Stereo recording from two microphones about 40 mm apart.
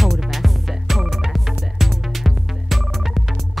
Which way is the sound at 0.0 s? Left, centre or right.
Centre.